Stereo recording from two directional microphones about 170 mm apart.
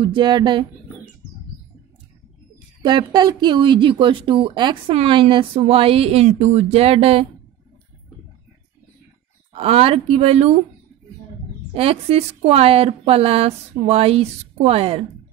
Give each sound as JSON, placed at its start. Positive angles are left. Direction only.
{"t": 0.0, "sound": "speech", "side_deg": -30}
{"t": 2.8, "sound": "speech", "side_deg": -25}
{"t": 9.5, "sound": "speech", "side_deg": -35}
{"t": 11.7, "sound": "speech", "side_deg": -35}